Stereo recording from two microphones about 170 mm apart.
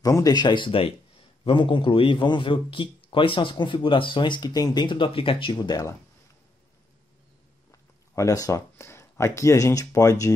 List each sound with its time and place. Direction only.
0.0 s a man's voice: 20° left (ahead or behind)
8.1 s speech: 20° left (ahead or behind)